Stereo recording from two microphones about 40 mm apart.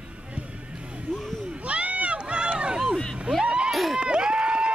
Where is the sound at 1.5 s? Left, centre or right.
Right.